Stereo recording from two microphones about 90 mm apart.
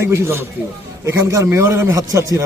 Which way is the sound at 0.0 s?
30° right (ahead or behind).